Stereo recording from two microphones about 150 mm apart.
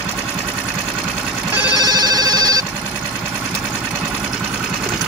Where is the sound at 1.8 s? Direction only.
30° right (ahead or behind).